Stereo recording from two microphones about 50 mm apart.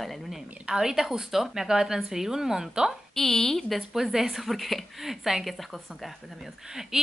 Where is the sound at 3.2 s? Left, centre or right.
Centre.